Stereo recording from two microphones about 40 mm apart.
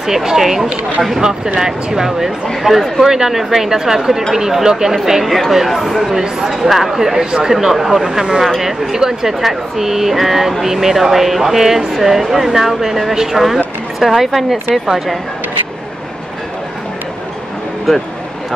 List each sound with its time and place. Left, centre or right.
0.0 s speech: centre
7.5 s speech: centre